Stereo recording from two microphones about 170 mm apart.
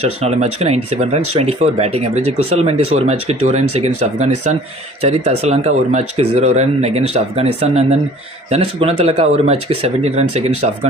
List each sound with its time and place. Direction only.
0.0 s speech: 40° right (ahead or behind)